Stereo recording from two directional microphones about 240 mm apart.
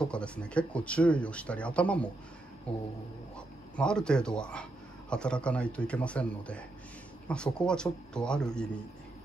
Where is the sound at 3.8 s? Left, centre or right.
Centre.